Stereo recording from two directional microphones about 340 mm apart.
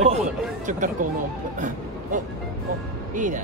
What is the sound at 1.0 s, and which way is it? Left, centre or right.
Speech, right.